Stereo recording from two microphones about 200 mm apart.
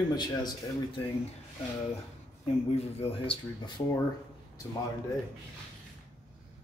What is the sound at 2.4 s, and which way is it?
Speech, 30° left (ahead or behind).